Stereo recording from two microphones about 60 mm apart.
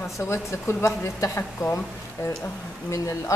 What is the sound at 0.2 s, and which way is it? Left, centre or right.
Speech, left.